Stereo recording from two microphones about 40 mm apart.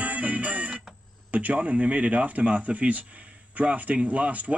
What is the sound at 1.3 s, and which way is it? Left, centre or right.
Speech, right.